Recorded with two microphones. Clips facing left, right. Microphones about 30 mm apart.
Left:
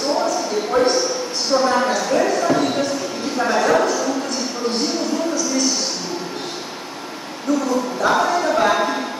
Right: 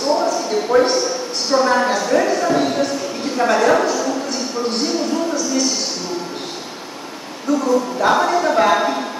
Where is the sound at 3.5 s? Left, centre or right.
Centre.